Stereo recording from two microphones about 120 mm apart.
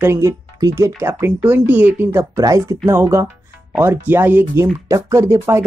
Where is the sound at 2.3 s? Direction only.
30° right (ahead or behind).